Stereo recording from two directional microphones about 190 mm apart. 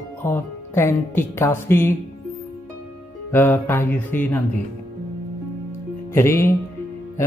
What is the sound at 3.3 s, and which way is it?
Speech, 10° left (ahead or behind).